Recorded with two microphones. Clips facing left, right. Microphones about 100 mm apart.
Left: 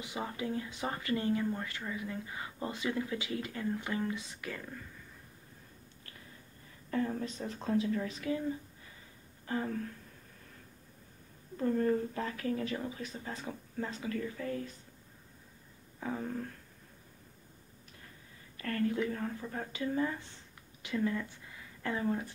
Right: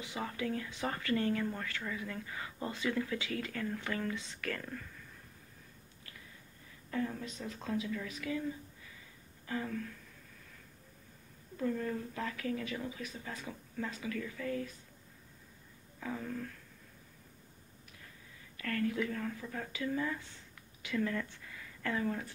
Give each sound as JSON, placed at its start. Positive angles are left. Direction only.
{"t": 0.0, "sound": "speech", "side_deg": 20}
{"t": 6.9, "sound": "speech", "side_deg": 40}
{"t": 9.5, "sound": "speech", "side_deg": 35}
{"t": 11.5, "sound": "speech", "side_deg": 40}
{"t": 16.0, "sound": "speech", "side_deg": 35}
{"t": 18.6, "sound": "speech", "side_deg": 35}